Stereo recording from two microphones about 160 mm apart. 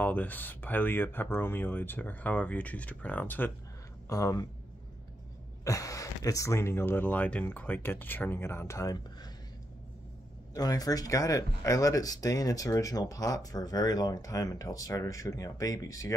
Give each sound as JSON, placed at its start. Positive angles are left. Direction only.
{"t": 0.0, "sound": "speech", "side_deg": 10}
{"t": 5.6, "sound": "speech", "side_deg": 20}
{"t": 10.5, "sound": "speech", "side_deg": 25}